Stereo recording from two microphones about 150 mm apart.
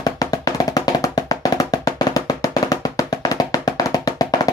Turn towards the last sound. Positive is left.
turn(degrees=25)  # may be behind; listen again after turning